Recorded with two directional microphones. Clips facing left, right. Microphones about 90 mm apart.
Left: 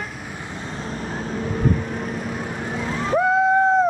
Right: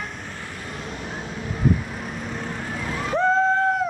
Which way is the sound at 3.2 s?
10° left (ahead or behind).